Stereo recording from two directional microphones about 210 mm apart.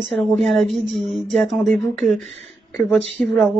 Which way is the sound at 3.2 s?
Centre (ahead or behind).